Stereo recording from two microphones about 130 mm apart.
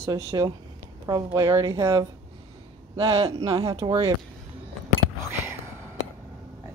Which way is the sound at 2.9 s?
40° right (ahead or behind).